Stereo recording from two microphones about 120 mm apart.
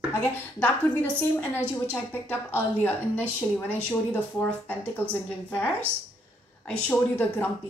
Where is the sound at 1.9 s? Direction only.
15° left (ahead or behind).